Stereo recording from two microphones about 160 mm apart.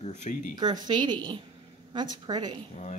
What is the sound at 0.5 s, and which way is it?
Speech, 25° right (ahead or behind).